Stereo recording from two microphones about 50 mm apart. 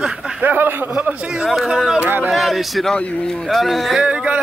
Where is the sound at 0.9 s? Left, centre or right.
Right.